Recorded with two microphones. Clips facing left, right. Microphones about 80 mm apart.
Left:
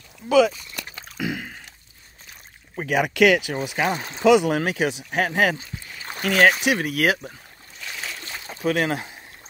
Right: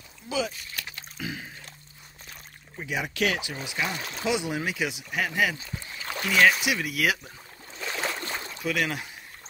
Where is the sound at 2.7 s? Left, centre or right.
Left.